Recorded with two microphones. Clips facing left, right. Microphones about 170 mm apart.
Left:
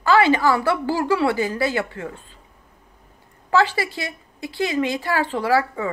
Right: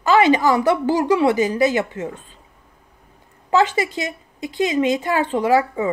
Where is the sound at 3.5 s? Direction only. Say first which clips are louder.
Right 2 dB; 20° right (ahead or behind).